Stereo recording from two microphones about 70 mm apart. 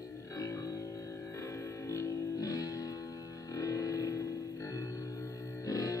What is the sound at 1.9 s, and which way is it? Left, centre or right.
Music, left.